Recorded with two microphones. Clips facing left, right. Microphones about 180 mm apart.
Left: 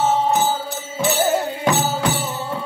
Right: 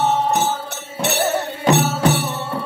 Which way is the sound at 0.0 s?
70° right (ahead or behind).